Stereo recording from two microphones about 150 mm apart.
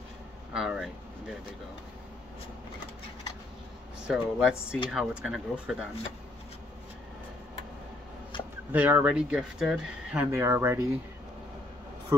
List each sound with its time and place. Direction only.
0.5 s speech: 5° right (ahead or behind)
4.1 s speech: 5° right (ahead or behind)
8.3 s a sound: 35° left (ahead or behind)
8.7 s speech: 10° right (ahead or behind)
12.1 s a man's voice: 25° right (ahead or behind)